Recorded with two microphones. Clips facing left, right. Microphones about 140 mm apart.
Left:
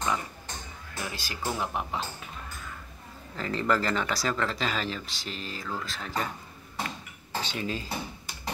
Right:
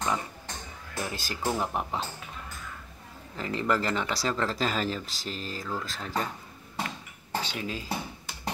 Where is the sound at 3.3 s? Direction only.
15° right (ahead or behind); by 6.3 s 35° right (ahead or behind).